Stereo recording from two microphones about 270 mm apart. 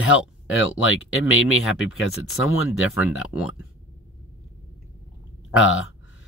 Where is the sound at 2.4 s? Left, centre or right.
Left.